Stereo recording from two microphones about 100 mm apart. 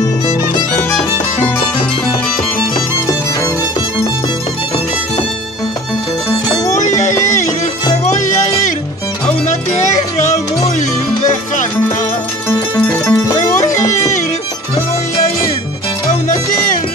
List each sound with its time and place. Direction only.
6.5 s music: 40° left (ahead or behind)
12.4 s music: 25° left (ahead or behind)